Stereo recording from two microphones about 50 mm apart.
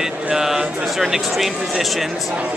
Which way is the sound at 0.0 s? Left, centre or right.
Centre.